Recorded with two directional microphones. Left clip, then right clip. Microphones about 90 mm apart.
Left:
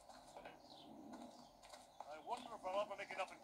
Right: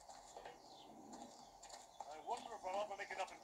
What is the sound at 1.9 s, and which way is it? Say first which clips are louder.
Clip-clop: right 2 dB; 45° left (ahead or behind).